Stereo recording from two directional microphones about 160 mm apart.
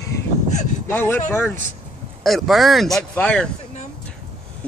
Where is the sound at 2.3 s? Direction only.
Centre (ahead or behind).